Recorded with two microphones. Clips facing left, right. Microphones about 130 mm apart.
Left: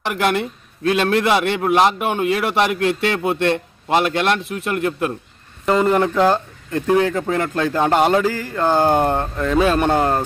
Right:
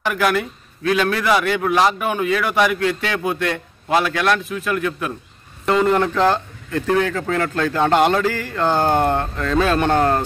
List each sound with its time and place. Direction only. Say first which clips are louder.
0.2 s a man's voice: left 1 dB; 25° left (ahead or behind)
5.7 s speech: left 1 dB; 5° left (ahead or behind)